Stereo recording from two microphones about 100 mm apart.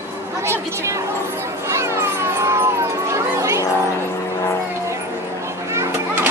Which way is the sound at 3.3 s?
30° right (ahead or behind).